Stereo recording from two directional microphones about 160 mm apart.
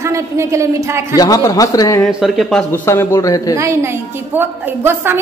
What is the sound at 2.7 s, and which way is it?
Speech, 15° left (ahead or behind).